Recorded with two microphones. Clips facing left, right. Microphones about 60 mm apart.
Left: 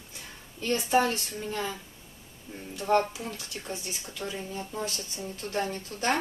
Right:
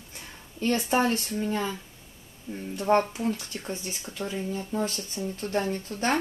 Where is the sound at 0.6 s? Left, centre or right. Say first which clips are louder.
Right 1 dB; right.